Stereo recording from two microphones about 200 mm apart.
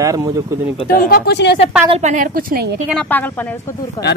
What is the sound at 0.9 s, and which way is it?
Speech, 50° left (ahead or behind).